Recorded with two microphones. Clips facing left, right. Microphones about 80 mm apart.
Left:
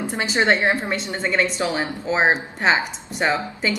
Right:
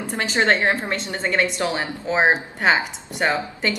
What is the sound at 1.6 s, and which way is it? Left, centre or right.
A woman's voice, centre.